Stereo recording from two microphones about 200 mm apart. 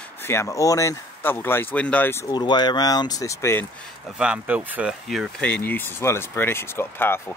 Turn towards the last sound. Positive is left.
turn(degrees=10)  # may be behind; listen again after turning